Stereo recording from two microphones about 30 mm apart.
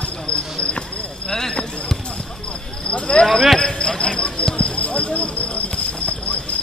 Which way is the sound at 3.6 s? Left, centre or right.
Left.